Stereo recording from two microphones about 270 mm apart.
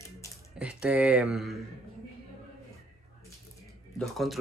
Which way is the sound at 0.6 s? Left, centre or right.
Centre.